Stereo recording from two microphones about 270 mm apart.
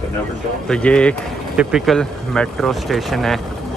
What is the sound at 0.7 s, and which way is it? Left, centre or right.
Speech, centre.